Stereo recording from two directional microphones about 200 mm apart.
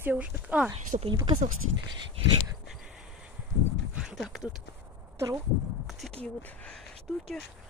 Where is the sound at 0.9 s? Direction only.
30° right (ahead or behind).